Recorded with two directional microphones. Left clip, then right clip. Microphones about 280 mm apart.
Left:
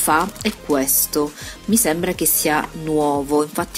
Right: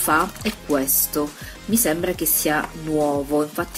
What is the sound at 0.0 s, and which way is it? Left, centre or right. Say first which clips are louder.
Speech: left 2 dB; left.